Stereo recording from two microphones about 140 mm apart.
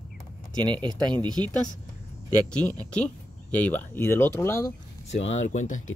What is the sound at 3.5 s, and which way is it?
Speech, 10° left (ahead or behind).